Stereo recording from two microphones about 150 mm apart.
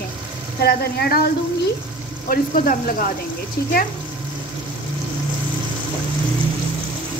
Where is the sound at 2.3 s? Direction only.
75° left (ahead or behind).